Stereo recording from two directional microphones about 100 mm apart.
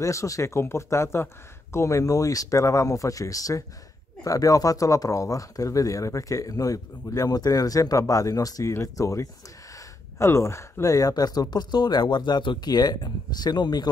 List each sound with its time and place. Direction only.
0.0 s speech: 30° left (ahead or behind)